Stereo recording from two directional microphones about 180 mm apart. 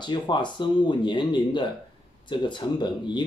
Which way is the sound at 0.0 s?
25° left (ahead or behind).